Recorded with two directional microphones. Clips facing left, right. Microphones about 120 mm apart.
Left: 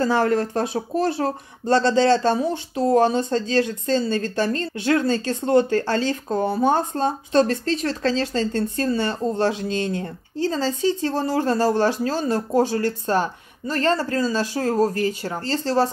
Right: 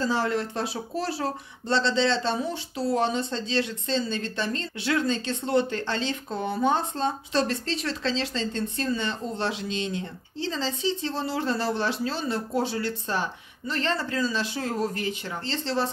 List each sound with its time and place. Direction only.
0.0 s speech: 55° left (ahead or behind)